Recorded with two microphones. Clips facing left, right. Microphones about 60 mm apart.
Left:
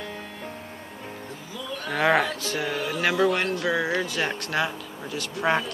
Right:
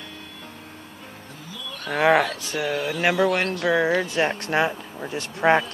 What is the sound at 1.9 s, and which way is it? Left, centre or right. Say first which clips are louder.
Speech: right 3 dB; centre.